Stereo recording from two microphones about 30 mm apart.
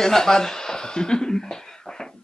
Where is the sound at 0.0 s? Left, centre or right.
Centre.